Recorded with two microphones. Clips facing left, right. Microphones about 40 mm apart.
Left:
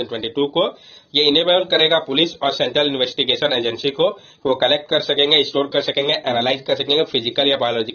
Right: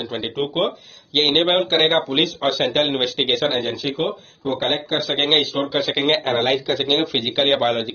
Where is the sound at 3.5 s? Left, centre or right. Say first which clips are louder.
Left 2 dB; left.